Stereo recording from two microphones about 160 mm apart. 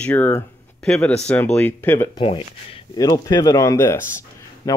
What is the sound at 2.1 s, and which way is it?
Speech, 35° left (ahead or behind).